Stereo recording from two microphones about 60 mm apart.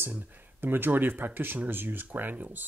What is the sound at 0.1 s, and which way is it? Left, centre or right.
Speech, right.